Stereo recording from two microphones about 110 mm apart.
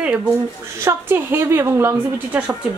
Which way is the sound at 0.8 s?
20° right (ahead or behind).